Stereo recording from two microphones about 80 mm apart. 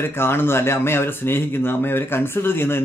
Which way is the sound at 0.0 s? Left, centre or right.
Left.